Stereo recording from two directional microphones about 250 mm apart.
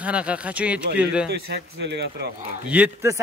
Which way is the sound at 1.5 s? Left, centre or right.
Right.